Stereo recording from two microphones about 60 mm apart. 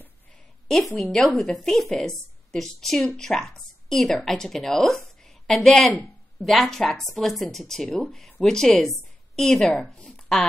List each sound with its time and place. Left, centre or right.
0.7 s a woman's voice: centre
1.0 s a woman's voice: centre
1.4 s a woman's voice: centre